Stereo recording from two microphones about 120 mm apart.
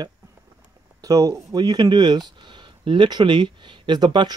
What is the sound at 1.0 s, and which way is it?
Speech, 30° right (ahead or behind).